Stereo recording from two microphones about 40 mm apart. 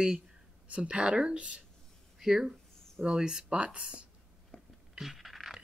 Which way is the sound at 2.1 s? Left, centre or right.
Centre.